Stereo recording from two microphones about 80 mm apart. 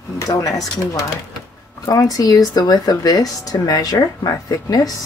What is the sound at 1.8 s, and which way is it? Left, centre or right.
Speech, left.